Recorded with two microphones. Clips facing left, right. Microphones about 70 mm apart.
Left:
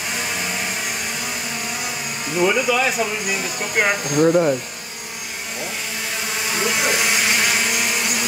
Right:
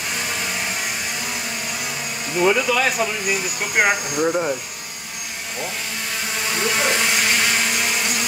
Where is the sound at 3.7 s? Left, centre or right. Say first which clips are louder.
Left 1 dB; centre.